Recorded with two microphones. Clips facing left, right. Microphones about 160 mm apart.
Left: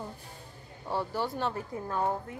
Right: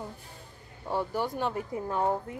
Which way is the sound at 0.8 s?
15° right (ahead or behind).